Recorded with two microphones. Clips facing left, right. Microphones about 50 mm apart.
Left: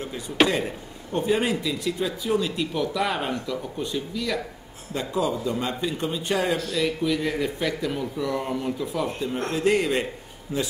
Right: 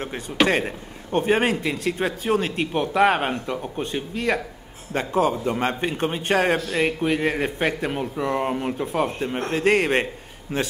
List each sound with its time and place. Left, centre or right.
0.5 s a man's voice: right